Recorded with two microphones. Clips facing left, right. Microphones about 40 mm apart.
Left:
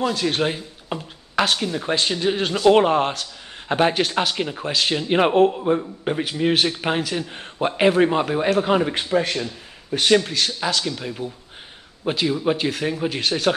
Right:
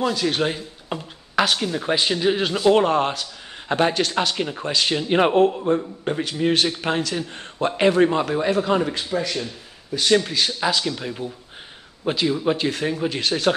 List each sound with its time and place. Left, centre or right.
0.0 s speech: centre
2.7 s speech: centre
8.9 s speech: left
10.2 s speech: centre